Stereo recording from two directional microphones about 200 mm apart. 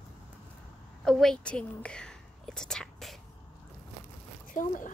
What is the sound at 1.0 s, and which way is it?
Speech, 5° left (ahead or behind).